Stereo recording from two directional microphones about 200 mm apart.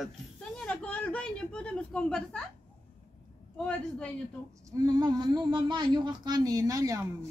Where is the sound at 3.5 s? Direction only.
5° left (ahead or behind).